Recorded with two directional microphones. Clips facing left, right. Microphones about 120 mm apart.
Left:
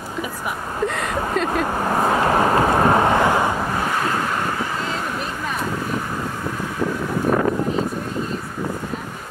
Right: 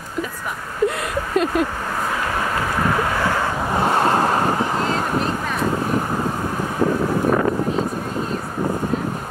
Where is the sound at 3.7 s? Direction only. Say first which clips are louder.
Right 5 dB; 30° right (ahead or behind).